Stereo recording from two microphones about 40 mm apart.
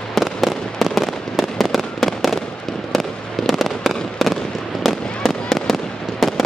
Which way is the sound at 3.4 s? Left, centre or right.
Centre.